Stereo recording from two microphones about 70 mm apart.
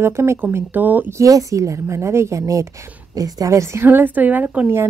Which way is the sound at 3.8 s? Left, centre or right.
Right.